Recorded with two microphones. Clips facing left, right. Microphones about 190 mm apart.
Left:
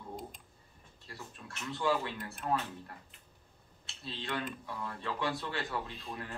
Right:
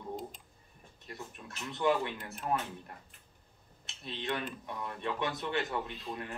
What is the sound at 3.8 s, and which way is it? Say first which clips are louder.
Speech: right 3 dB; 20° right (ahead or behind).